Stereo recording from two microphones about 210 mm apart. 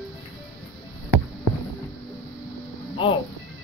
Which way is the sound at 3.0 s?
25° left (ahead or behind).